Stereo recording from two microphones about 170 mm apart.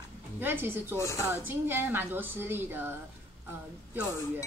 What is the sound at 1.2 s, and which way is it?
A woman's voice, 15° right (ahead or behind).